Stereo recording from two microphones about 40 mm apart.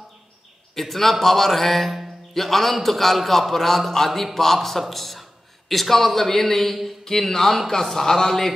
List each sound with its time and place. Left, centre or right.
0.7 s a man's voice: centre